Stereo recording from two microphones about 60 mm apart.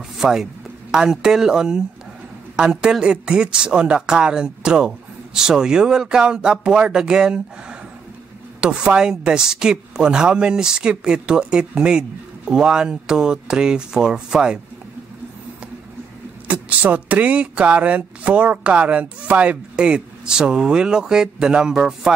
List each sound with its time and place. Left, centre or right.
0.2 s speech: centre
8.5 s speech: centre
16.4 s speech: right